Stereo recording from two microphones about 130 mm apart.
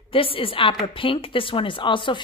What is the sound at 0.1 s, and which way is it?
Speech, 45° left (ahead or behind).